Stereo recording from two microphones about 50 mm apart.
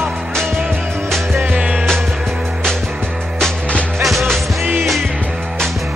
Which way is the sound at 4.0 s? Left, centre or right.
Centre.